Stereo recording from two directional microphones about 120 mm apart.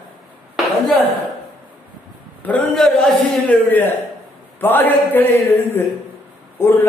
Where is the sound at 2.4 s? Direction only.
10° left (ahead or behind).